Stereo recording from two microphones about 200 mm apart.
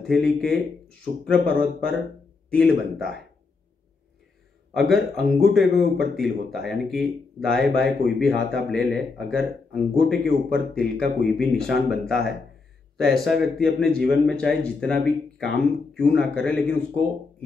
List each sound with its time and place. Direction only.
0.0 s speech: centre (ahead or behind)
4.7 s speech: centre (ahead or behind)
13.2 s speech: centre (ahead or behind)